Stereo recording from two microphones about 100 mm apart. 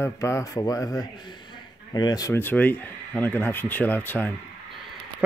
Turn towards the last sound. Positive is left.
turn(degrees=20)  # may be behind; listen again after turning